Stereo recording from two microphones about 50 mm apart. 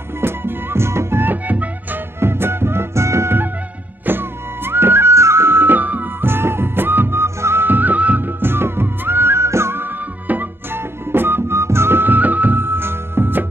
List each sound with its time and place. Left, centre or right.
0.2 s music: right
1.2 s music: right
2.1 s music: right
4.0 s music: right
5.1 s music: right
6.2 s music: right
7.2 s music: right
7.6 s music: right
9.8 s music: right
10.7 s music: right